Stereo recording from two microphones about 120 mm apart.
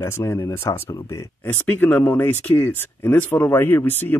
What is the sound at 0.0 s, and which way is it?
Speech, 20° left (ahead or behind).